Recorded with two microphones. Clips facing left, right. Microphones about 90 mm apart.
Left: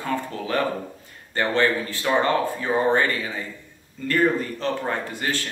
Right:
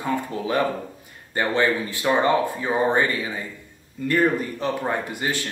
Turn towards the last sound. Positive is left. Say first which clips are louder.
# right 1 dB
turn(degrees=-15)  # may be behind; listen again after turning